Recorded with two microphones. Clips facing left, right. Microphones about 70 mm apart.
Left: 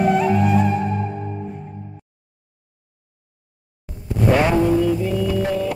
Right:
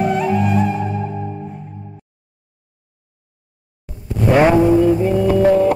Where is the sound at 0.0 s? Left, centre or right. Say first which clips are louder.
Even; centre.